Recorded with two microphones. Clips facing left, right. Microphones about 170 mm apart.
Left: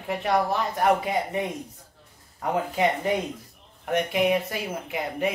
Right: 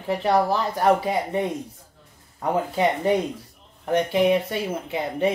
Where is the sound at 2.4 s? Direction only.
30° right (ahead or behind).